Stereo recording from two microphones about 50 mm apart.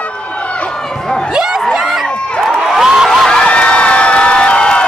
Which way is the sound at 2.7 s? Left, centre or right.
Centre.